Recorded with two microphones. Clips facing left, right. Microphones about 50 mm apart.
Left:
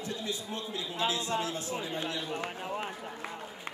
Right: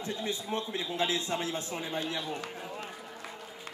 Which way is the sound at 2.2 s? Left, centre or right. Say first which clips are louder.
Left 2 dB; left.